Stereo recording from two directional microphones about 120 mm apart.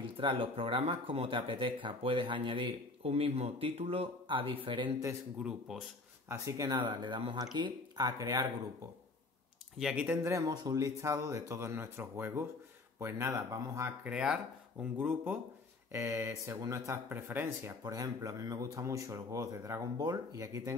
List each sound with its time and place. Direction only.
0.0 s speech: 45° right (ahead or behind)
5.4 s speech: 5° right (ahead or behind)
6.2 s speech: 25° right (ahead or behind)
9.8 s speech: 5° right (ahead or behind)
10.2 s speech: 30° right (ahead or behind)
14.0 s speech: 5° right (ahead or behind); by 20.7 s 25° right (ahead or behind)